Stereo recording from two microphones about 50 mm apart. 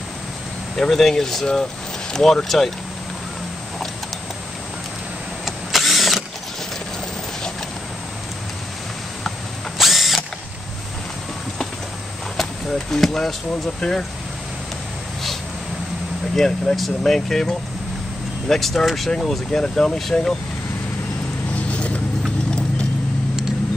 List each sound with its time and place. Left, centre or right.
0.7 s speech: centre
5.4 s vehicle: centre
9.8 s mechanisms: centre
12.9 s speech: centre
16.3 s speech: centre
21.6 s vehicle: left